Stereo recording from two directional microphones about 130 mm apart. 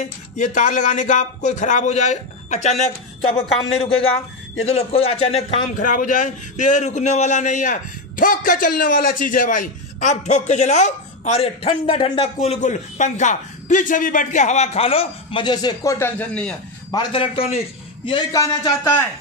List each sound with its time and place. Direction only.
0.0 s a man's voice: 70° left (ahead or behind)
3.3 s a man's voice: 50° left (ahead or behind)
5.8 s a man's voice: 90° left; by 10.9 s 60° left (ahead or behind)
11.3 s a man's voice: 50° left (ahead or behind); by 16.5 s 10° left (ahead or behind)
16.9 s a man's voice: 40° left (ahead or behind)
18.3 s speech: 30° left (ahead or behind)